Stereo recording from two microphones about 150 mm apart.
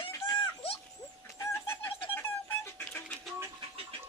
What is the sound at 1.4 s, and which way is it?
Chicken, 15° left (ahead or behind).